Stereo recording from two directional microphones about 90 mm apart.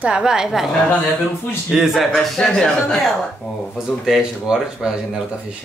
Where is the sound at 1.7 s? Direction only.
5° right (ahead or behind).